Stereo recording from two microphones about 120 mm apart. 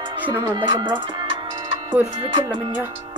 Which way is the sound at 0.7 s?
40° right (ahead or behind).